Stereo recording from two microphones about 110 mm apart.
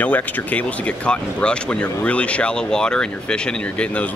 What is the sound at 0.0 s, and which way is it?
Speech, 15° left (ahead or behind).